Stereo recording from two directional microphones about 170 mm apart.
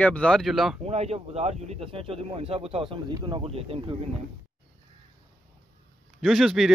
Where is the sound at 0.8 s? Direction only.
40° right (ahead or behind).